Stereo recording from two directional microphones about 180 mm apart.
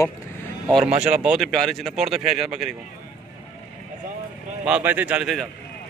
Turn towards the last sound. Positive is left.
turn(degrees=0)  # may be behind; listen again after turning